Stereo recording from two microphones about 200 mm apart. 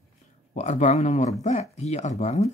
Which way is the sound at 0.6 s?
35° left (ahead or behind).